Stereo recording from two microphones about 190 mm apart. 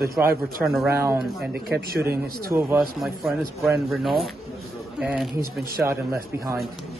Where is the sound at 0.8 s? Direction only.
15° right (ahead or behind).